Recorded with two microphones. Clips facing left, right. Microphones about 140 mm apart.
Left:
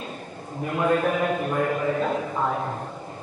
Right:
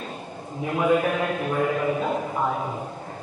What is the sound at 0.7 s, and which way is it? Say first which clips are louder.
A man's voice: right 1 dB; 5° right (ahead or behind).